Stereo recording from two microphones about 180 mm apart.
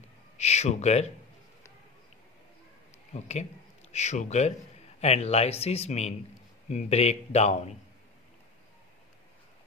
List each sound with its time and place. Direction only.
0.4 s speech: 35° left (ahead or behind)
3.1 s a man's voice: 40° left (ahead or behind)